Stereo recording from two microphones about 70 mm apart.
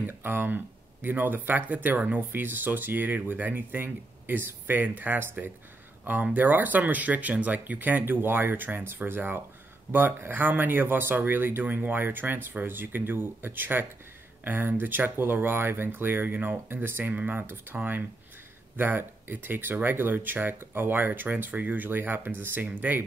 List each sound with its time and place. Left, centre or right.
0.0 s speech: right